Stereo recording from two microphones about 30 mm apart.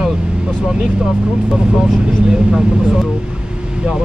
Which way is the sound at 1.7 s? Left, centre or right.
Right.